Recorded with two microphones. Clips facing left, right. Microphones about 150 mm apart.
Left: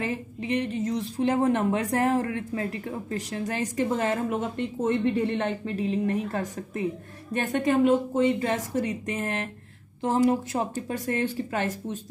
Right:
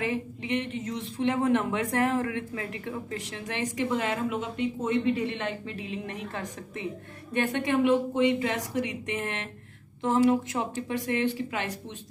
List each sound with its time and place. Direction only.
0.0 s a woman's voice: 40° left (ahead or behind)